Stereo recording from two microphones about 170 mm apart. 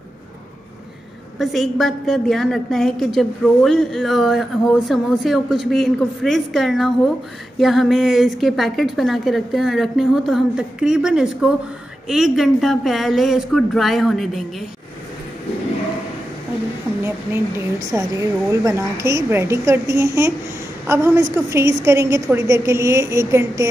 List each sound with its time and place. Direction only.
1.4 s a woman's voice: centre (ahead or behind)
17.0 s speech: 15° right (ahead or behind)